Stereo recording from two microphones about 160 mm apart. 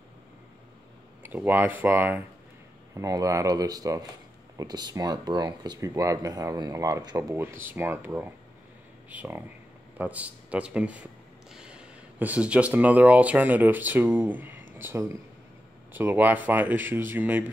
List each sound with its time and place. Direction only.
1.2 s speech: 10° right (ahead or behind)